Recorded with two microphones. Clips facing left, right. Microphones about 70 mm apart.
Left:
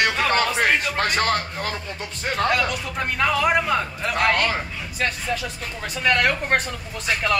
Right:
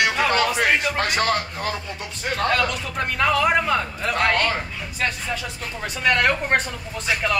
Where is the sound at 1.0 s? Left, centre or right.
Left.